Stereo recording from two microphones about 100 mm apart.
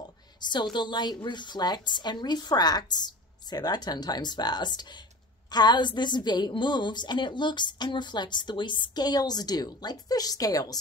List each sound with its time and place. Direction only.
0.4 s a woman's voice: 50° left (ahead or behind)